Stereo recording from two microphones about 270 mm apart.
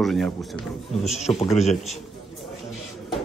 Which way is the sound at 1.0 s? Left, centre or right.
Left.